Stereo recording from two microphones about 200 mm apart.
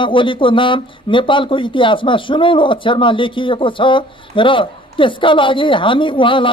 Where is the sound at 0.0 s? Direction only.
25° left (ahead or behind).